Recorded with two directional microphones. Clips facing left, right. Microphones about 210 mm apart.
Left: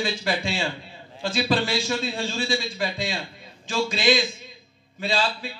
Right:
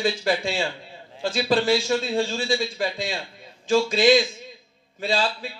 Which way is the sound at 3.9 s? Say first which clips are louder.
Right 3 dB; 45° right (ahead or behind).